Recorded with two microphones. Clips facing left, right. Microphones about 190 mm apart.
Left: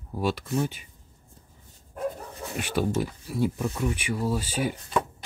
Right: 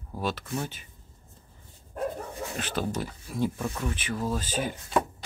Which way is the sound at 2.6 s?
10° left (ahead or behind).